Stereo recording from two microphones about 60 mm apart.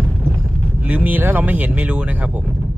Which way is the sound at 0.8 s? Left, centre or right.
Right.